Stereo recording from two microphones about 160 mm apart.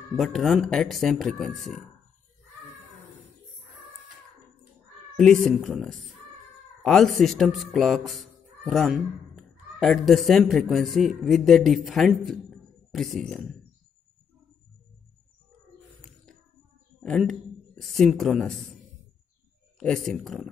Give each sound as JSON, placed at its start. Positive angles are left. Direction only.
{"t": 0.2, "sound": "speech", "side_deg": 0}
{"t": 5.1, "sound": "speech", "side_deg": 5}
{"t": 17.0, "sound": "a woman's voice", "side_deg": 5}
{"t": 19.8, "sound": "speech", "side_deg": 5}